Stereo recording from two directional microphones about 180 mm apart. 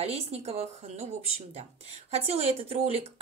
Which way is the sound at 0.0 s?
35° right (ahead or behind).